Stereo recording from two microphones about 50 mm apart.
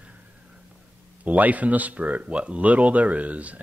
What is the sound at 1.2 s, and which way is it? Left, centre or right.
Speech, right.